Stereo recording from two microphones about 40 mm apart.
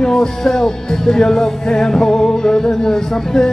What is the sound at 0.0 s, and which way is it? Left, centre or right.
Music, centre.